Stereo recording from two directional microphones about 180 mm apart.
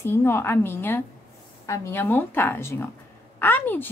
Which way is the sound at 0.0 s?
15° left (ahead or behind).